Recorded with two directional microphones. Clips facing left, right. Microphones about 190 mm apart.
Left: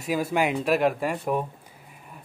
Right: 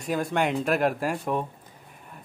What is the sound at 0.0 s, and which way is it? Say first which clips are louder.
Speech: left 1 dB; 5° left (ahead or behind).